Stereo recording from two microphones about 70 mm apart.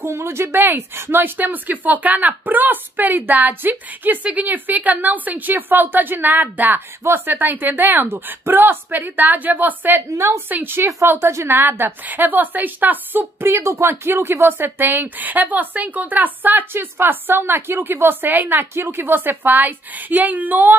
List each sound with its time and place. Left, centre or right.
0.0 s a woman's voice: right
10.0 s a woman's voice: right
10.5 s a woman's voice: right